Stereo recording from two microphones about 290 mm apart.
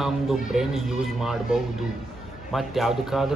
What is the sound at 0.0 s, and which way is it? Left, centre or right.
Speech, centre.